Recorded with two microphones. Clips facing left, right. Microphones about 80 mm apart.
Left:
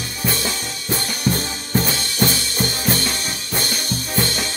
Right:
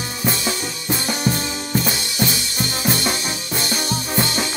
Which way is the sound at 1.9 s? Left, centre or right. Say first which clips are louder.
Even; centre.